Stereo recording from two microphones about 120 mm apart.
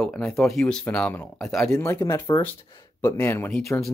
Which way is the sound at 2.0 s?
35° left (ahead or behind).